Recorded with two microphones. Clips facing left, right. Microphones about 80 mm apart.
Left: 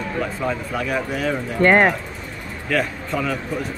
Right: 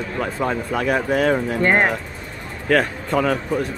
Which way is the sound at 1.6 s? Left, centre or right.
Left.